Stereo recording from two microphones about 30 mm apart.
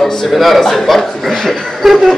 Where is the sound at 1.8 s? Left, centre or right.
Centre.